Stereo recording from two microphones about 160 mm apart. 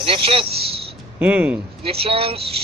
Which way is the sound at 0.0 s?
35° right (ahead or behind).